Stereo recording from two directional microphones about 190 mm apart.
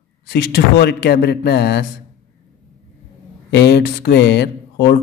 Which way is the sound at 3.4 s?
60° left (ahead or behind).